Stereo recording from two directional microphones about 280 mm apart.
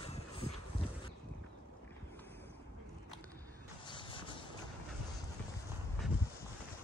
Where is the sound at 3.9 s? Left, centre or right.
Centre.